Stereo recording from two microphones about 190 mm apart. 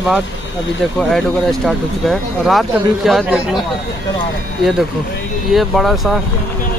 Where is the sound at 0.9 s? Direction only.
Centre (ahead or behind).